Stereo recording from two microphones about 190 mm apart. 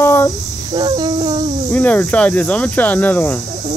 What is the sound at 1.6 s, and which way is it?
Speech, 5° left (ahead or behind).